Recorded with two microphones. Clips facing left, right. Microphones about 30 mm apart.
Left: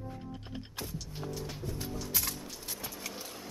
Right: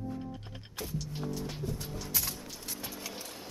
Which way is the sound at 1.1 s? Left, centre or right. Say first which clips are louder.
Right 1 dB; centre.